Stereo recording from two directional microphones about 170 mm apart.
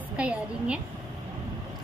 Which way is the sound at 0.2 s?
5° right (ahead or behind).